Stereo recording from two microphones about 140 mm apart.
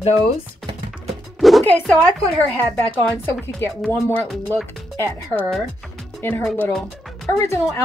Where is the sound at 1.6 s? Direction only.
10° left (ahead or behind).